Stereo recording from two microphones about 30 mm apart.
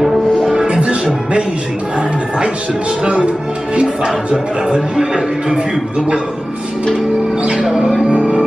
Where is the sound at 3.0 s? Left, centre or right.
Right.